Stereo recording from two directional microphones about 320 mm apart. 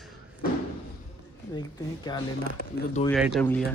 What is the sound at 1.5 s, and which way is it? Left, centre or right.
Speech, centre.